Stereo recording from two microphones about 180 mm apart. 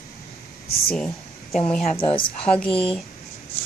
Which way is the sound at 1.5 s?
5° left (ahead or behind).